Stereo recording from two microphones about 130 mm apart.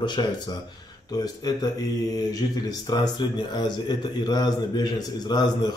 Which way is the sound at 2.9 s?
35° left (ahead or behind).